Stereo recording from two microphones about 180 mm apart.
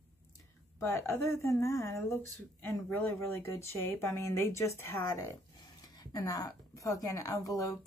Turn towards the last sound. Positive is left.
turn(degrees=20)  # may be behind; listen again after turning